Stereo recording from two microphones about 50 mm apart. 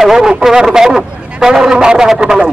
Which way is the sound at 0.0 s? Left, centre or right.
Centre.